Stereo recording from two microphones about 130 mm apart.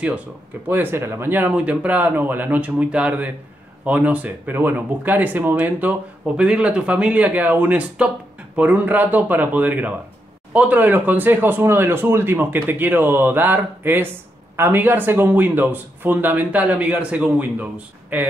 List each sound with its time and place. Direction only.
0.7 s speech: 15° right (ahead or behind)